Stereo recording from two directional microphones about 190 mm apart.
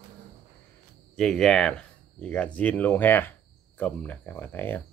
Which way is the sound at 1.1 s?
Centre (ahead or behind).